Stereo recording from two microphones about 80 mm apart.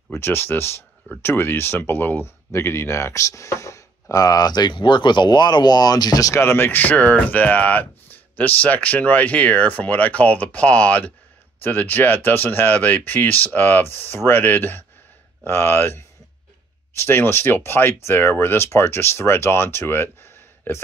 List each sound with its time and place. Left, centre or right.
0.1 s speech: left
6.3 s speech: left